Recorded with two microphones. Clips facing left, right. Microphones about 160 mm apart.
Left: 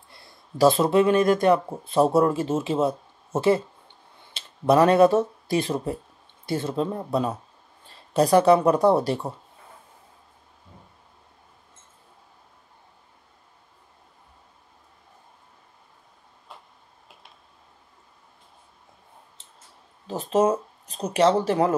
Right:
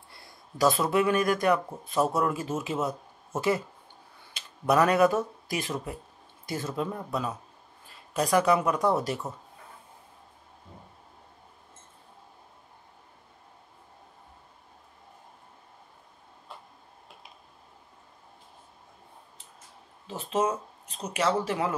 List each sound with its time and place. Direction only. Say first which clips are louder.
0.1 s speech: left 6 dB; 25° left (ahead or behind)
20.1 s speech: left 7 dB; 35° left (ahead or behind)